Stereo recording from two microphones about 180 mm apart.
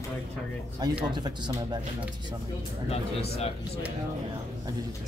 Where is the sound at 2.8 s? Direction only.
35° left (ahead or behind).